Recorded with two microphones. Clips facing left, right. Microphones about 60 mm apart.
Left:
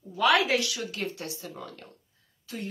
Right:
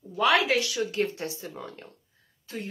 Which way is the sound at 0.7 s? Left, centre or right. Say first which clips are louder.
Right 6 dB; right.